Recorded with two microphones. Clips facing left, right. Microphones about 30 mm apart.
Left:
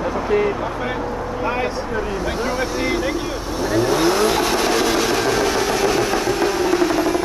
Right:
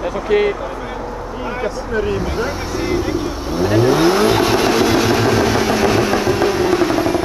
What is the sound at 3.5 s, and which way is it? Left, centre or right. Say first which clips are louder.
Vehicle: right 5 dB; centre.